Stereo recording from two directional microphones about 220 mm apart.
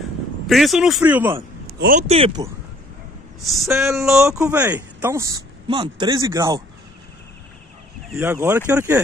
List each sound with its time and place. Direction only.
0.5 s speech: centre (ahead or behind)
1.8 s speech: 35° right (ahead or behind)
3.3 s speech: centre (ahead or behind)
8.1 s speech: 10° right (ahead or behind)